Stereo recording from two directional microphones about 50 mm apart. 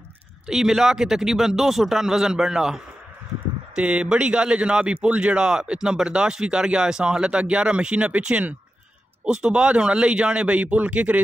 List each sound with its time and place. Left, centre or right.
0.5 s speech: centre
3.7 s speech: right